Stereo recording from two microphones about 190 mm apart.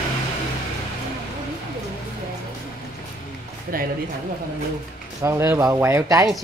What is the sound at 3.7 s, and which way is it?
Speech, 50° right (ahead or behind).